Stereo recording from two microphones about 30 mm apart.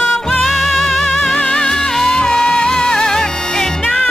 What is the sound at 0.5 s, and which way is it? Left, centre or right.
Music, centre.